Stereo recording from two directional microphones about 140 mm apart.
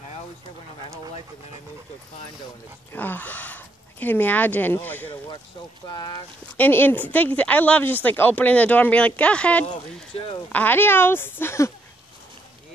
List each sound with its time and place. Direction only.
2.9 s speech: 15° left (ahead or behind)
5.9 s speech: 25° left (ahead or behind)
6.5 s speech: 15° left (ahead or behind)